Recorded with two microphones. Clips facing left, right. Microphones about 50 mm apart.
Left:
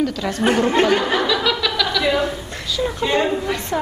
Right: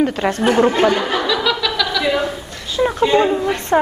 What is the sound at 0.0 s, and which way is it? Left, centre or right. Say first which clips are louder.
Speech: right 4 dB; right.